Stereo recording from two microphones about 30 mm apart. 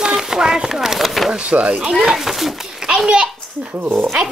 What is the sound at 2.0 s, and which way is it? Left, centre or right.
Speech, centre.